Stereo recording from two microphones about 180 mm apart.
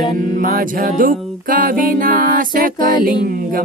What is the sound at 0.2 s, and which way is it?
A capella, 50° right (ahead or behind).